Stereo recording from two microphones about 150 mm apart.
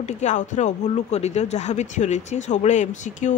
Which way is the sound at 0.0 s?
50° left (ahead or behind).